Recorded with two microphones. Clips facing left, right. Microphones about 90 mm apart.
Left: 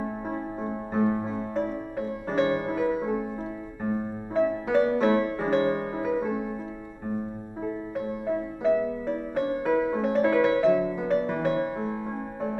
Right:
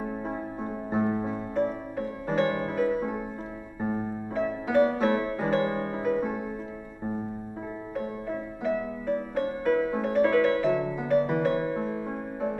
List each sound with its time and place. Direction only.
0.9 s piano: 5° right (ahead or behind)
2.3 s music: 15° left (ahead or behind)
4.4 s music: centre (ahead or behind)
5.5 s music: 15° left (ahead or behind)
8.3 s music: 5° left (ahead or behind)